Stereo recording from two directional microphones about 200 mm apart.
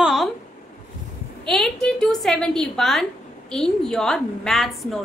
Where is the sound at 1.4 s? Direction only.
Centre (ahead or behind).